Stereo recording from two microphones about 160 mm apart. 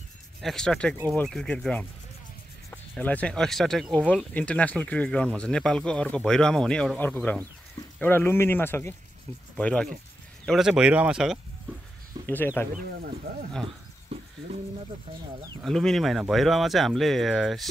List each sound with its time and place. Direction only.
0.4 s speech: centre (ahead or behind)
3.0 s speech: 10° left (ahead or behind)
12.3 s speech: 10° left (ahead or behind)
13.3 s speech: 80° right
14.1 s a sound: 35° right (ahead or behind)
15.6 s speech: 5° left (ahead or behind)